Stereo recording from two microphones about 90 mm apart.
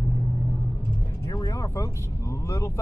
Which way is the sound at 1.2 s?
40° left (ahead or behind).